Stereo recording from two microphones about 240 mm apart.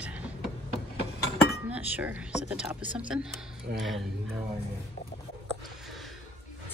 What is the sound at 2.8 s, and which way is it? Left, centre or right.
Speech, right.